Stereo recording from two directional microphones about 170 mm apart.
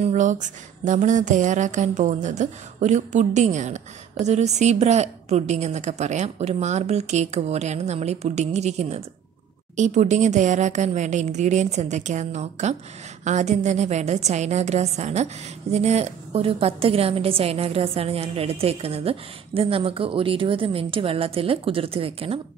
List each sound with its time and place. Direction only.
0.0 s a woman's voice: 45° right (ahead or behind)